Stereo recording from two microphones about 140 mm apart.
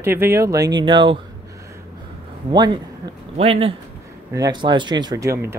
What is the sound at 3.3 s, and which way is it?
Speech, 45° right (ahead or behind).